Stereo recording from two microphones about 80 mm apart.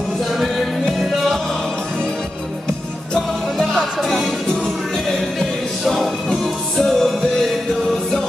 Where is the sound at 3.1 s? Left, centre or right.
Centre.